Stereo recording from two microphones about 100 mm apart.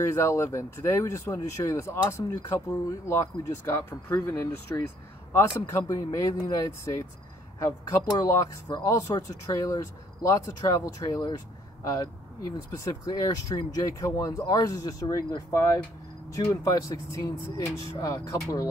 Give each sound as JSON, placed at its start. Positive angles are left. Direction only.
{"t": 0.0, "sound": "speech", "side_deg": 30}
{"t": 16.6, "sound": "speech", "side_deg": 35}